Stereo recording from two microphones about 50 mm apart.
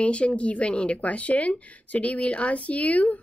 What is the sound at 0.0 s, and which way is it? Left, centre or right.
Speech, left.